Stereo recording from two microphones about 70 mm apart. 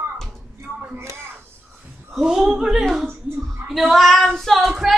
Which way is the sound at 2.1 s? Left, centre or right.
Centre.